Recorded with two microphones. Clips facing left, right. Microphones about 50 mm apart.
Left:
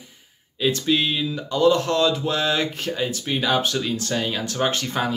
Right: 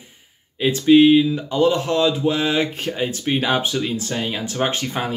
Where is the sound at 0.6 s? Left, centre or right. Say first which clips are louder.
Right 8 dB; right.